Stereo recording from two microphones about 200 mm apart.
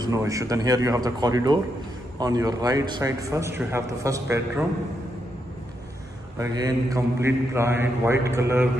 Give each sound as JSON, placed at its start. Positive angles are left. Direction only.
{"t": 0.0, "sound": "a man's voice", "side_deg": -15}
{"t": 6.3, "sound": "a man's voice", "side_deg": -15}